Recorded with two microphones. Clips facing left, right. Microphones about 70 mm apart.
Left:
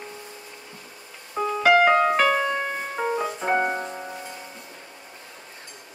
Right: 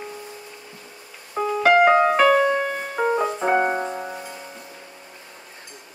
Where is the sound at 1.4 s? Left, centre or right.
Centre.